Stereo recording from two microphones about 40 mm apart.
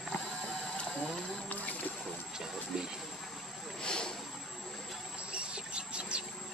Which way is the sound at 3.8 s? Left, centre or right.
Left.